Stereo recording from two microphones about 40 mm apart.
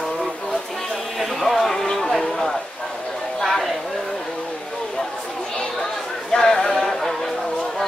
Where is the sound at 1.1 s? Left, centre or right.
Centre.